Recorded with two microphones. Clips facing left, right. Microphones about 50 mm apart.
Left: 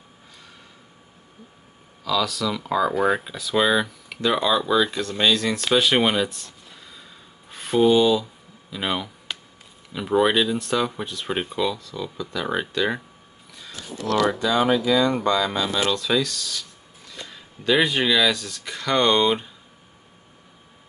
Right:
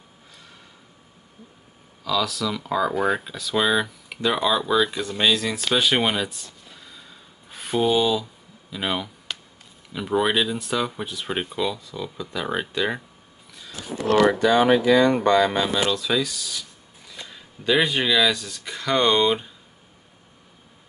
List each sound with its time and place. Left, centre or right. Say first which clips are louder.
2.0 s speech: left 1 dB; centre
5.8 s a sound: left 2 dB; centre
9.9 s speech: left 2 dB; centre
13.9 s speech: right 3 dB; right
14.4 s speech: right 3 dB; right
15.9 s speech: left 1 dB; centre